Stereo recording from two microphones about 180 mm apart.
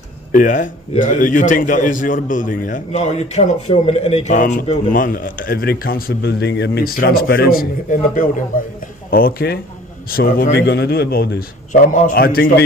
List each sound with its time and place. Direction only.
0.3 s a man's voice: 45° left (ahead or behind)